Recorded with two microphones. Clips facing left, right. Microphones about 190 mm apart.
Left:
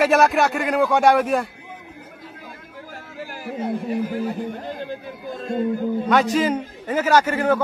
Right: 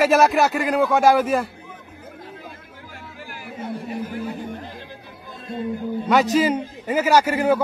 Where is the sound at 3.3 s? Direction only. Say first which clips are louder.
Left 5 dB; 40° left (ahead or behind).